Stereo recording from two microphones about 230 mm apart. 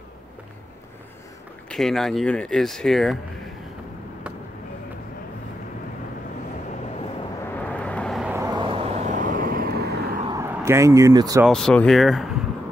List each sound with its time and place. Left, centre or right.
1.7 s speech: centre
7.5 s vehicle: centre
8.4 s vehicle: centre; by 10.2 s right
10.2 s speech: centre
11.4 s speech: centre